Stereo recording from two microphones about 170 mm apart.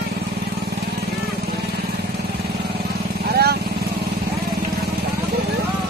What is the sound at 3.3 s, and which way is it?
Vehicle, 70° right (ahead or behind).